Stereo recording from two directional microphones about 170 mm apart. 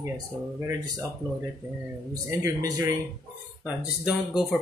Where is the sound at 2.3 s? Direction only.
20° right (ahead or behind).